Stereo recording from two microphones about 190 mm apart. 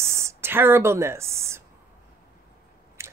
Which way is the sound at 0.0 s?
15° right (ahead or behind).